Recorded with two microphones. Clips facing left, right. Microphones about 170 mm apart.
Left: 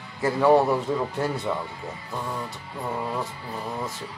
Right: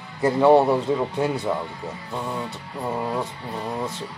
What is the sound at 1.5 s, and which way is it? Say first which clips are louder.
Speech: right 3 dB; centre (ahead or behind).